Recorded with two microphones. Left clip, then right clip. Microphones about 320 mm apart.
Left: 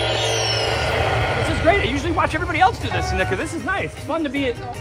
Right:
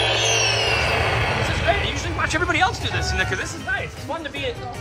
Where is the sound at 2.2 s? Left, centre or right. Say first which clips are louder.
Left 1 dB; centre.